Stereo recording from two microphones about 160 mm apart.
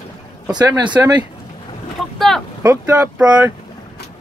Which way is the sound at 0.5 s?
25° right (ahead or behind).